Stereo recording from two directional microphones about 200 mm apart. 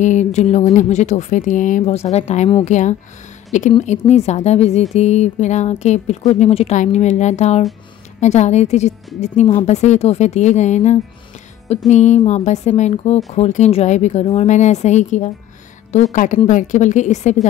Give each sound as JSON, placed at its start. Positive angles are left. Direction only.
{"t": 0.0, "sound": "a woman's voice", "side_deg": 35}